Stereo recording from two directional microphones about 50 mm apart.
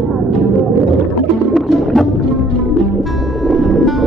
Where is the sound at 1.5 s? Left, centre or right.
Centre.